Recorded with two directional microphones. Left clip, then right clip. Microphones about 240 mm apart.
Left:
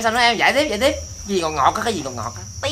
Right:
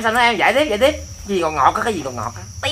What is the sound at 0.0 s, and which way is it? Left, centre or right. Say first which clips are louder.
Speech: right 1 dB; centre.